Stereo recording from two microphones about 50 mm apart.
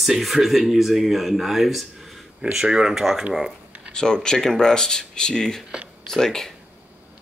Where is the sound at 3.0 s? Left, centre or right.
Centre.